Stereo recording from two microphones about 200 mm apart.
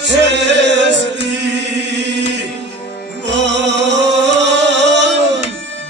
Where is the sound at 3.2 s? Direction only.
60° right (ahead or behind).